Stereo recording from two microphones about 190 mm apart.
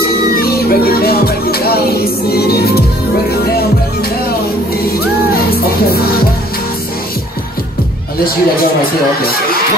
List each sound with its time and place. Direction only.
0.4 s music: 55° left (ahead or behind)
5.9 s music: 55° left (ahead or behind)